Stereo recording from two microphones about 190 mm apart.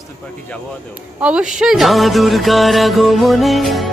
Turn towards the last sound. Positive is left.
turn(degrees=0)  # may be behind; listen again after turning